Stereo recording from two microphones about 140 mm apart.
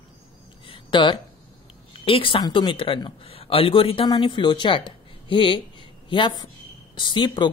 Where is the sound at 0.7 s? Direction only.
35° left (ahead or behind).